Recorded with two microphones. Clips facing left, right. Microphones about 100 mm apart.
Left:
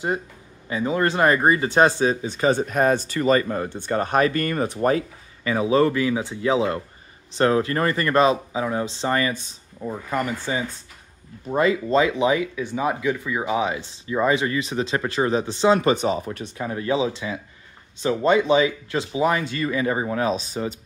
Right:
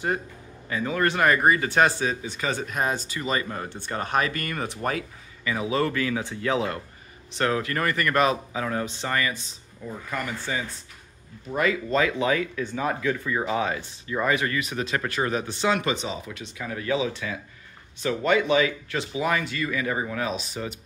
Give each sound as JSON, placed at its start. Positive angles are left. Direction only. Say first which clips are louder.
{"t": 0.7, "sound": "speech", "louder": "left 3 dB", "side_deg": 25}
{"t": 15.9, "sound": "speech", "louder": "left 8 dB", "side_deg": 45}